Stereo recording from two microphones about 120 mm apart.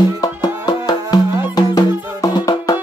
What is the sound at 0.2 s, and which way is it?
Music, 35° left (ahead or behind).